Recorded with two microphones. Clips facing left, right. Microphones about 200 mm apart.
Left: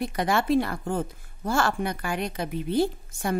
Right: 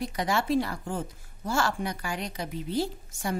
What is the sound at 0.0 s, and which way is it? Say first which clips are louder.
A woman's voice: left 3 dB; 55° left (ahead or behind).